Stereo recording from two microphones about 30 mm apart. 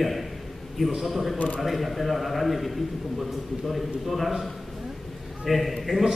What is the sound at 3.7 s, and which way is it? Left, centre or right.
Speech, centre.